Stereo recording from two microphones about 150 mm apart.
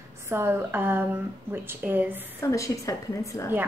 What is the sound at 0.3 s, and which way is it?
A woman's voice, 15° right (ahead or behind).